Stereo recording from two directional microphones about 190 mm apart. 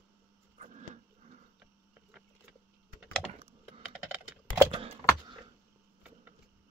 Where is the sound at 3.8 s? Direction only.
5° right (ahead or behind).